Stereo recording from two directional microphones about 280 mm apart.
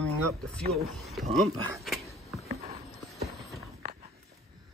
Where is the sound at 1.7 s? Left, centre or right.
Centre.